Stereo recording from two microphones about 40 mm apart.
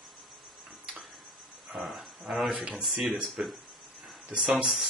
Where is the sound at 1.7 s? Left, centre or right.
Centre.